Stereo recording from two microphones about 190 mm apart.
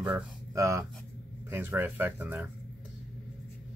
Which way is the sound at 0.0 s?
10° right (ahead or behind).